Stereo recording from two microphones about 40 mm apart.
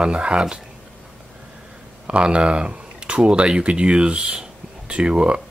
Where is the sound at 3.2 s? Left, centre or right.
Right.